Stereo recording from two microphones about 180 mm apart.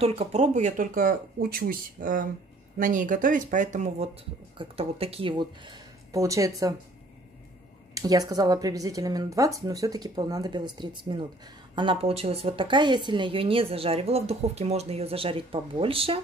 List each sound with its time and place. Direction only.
0.0 s speech: 35° right (ahead or behind); by 6.7 s 20° right (ahead or behind)
7.9 s a woman's voice: 20° right (ahead or behind)